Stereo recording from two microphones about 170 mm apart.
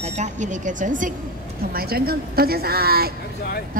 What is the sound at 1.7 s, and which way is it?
A woman's voice, 65° right (ahead or behind).